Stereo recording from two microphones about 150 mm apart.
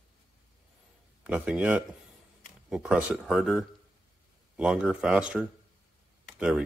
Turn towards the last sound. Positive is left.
turn(degrees=-5)  # may be behind; listen again after turning